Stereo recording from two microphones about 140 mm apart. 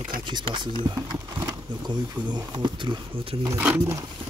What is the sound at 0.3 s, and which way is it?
Speech, 35° right (ahead or behind).